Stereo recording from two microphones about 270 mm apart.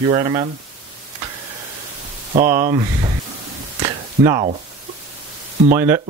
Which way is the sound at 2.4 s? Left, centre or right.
Centre.